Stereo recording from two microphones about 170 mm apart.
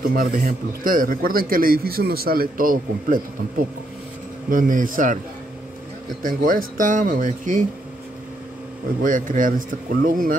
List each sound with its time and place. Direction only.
0.1 s a man's voice: 55° right (ahead or behind)
6.2 s speech: 55° right (ahead or behind)
9.0 s speech: 50° right (ahead or behind)